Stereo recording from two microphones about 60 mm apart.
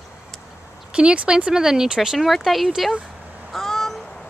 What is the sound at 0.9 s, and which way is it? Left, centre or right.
Speech, centre.